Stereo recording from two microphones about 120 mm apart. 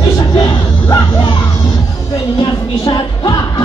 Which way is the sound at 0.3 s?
35° left (ahead or behind).